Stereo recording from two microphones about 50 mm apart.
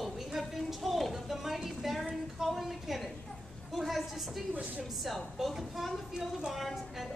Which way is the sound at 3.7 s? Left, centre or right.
Centre.